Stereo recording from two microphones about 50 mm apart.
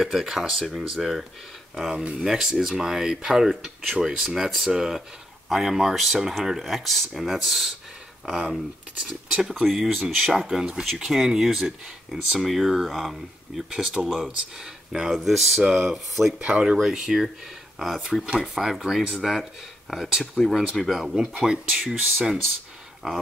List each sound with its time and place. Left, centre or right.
0.0 s speech: centre
9.0 s speech: centre
13.7 s speech: centre
16.3 s speech: right
16.7 s speech: centre
20.3 s speech: centre
21.1 s speech: centre